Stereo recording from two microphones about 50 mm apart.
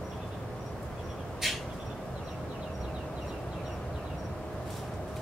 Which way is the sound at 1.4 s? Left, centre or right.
Centre.